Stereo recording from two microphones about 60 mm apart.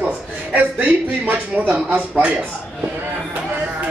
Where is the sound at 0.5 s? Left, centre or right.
Right.